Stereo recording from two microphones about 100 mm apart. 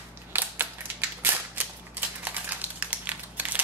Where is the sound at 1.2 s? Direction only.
20° right (ahead or behind).